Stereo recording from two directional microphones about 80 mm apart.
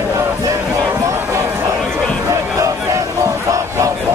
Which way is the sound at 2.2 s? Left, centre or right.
Right.